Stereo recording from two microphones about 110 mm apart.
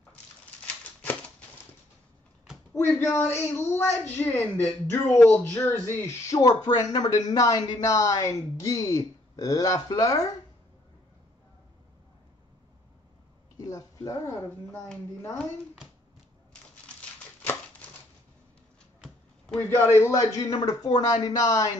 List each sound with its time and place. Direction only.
2.7 s a woman's voice: 25° left (ahead or behind)
13.7 s speech: 30° left (ahead or behind)
19.0 s a sound: centre (ahead or behind)
19.6 s a woman's voice: 20° left (ahead or behind)